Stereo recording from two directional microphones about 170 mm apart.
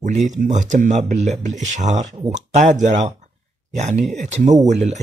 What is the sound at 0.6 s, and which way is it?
A man's voice, 45° right (ahead or behind).